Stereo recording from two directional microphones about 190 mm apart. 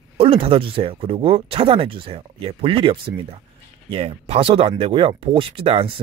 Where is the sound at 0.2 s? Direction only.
30° right (ahead or behind).